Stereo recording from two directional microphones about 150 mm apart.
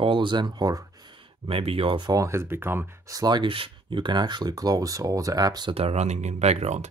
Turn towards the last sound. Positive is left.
turn(degrees=-50)  # may be behind; listen again after turning